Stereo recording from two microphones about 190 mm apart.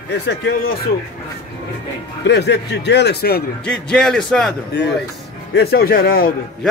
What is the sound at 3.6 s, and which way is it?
Speech, 5° left (ahead or behind).